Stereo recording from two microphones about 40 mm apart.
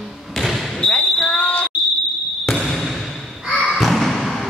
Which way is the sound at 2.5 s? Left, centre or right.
Centre.